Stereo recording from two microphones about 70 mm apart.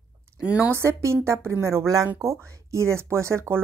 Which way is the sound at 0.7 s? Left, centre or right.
Right.